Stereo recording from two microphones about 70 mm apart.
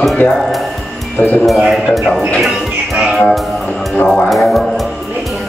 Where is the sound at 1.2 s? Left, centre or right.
Left.